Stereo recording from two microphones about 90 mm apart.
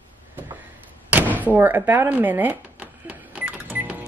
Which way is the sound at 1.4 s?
20° right (ahead or behind).